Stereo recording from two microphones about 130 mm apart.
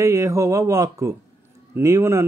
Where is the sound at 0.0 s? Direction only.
20° right (ahead or behind).